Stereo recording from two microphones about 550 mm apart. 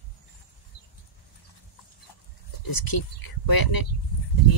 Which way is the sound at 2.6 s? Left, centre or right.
Left.